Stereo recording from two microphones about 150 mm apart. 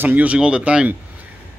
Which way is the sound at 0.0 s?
10° right (ahead or behind).